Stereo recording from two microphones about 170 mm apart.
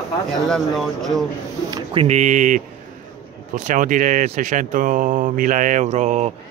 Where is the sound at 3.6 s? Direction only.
50° right (ahead or behind).